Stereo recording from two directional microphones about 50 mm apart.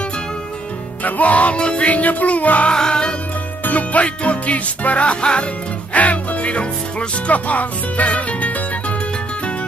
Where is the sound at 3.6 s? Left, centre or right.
Left.